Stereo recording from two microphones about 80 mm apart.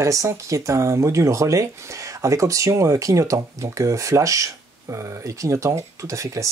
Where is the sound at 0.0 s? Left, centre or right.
Right.